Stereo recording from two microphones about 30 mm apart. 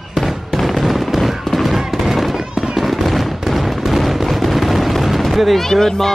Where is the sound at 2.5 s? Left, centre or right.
Right.